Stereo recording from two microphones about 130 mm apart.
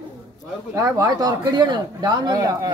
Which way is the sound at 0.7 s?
30° right (ahead or behind).